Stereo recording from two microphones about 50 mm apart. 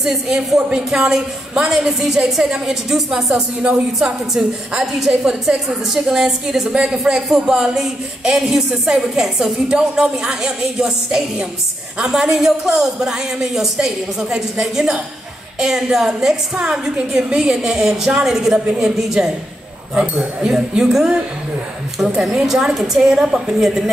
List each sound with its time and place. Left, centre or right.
0.0 s speech: centre
0.6 s speech: right
0.8 s a woman's voice: centre
3.6 s speech: centre
4.3 s a woman's voice: centre
6.7 s a woman's voice: centre